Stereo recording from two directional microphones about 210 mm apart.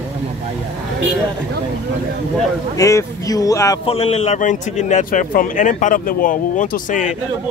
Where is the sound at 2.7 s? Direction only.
15° left (ahead or behind).